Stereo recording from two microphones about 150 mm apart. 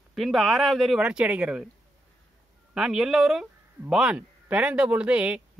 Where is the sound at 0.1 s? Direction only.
Centre (ahead or behind).